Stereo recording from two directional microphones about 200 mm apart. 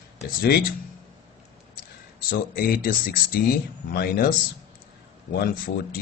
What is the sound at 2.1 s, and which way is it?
Speech, 45° left (ahead or behind).